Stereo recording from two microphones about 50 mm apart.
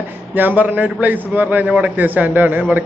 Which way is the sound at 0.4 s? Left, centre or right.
Right.